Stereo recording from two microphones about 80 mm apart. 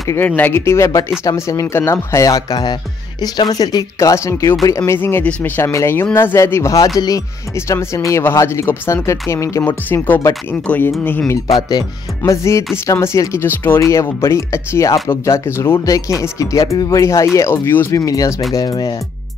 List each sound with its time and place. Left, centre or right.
0.4 s speech: left
7.0 s speech: left
7.5 s speech: left
9.7 s speech: left
12.3 s speech: left
13.7 s speech: left
15.8 s speech: left
17.9 s speech: left